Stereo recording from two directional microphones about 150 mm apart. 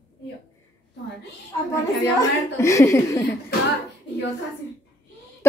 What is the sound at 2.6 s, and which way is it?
Speech, 20° left (ahead or behind).